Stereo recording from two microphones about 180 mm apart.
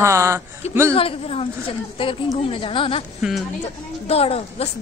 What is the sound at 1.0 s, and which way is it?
A woman's voice, 30° left (ahead or behind).